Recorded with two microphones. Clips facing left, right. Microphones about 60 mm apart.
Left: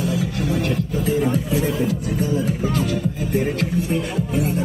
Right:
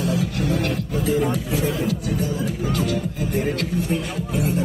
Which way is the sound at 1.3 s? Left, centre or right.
Left.